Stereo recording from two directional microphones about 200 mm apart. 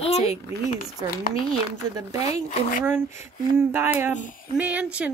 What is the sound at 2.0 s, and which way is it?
Speech, 15° right (ahead or behind).